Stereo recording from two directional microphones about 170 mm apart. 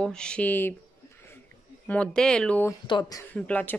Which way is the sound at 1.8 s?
5° left (ahead or behind).